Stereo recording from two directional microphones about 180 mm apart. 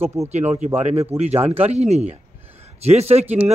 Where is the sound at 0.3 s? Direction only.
40° right (ahead or behind).